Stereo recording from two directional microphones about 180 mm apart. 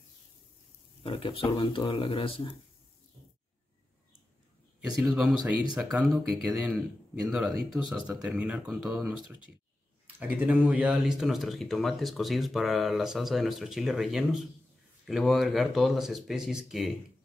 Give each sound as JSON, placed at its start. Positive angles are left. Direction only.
{"t": 1.0, "sound": "speech", "side_deg": 30}
{"t": 4.8, "sound": "speech", "side_deg": -5}